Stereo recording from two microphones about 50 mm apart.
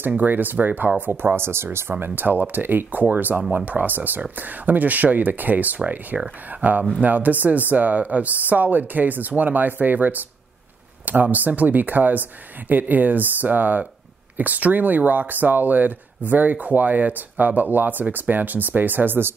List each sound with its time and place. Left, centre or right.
0.1 s speech: right
2.0 s speech: right
11.3 s speech: right